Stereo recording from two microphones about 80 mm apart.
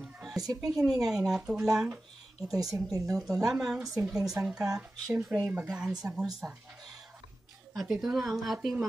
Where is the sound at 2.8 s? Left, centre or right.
Right.